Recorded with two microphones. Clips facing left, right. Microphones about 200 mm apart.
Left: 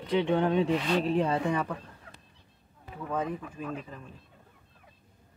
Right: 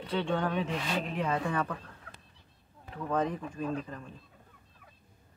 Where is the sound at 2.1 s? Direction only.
20° left (ahead or behind).